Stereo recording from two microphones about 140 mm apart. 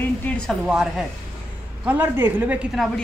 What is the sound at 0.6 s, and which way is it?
Speech, 5° right (ahead or behind).